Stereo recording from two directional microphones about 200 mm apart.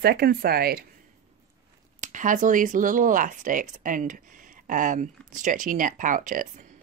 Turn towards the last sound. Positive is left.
turn(degrees=-40)  # may be behind; listen again after turning